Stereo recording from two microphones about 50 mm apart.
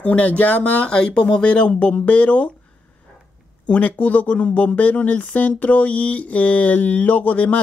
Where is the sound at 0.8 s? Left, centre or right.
Centre.